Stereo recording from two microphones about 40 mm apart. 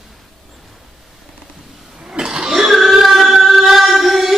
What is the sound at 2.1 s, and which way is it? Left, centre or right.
Chuckle, centre.